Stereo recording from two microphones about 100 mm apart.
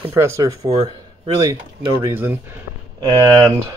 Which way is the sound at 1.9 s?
25° right (ahead or behind).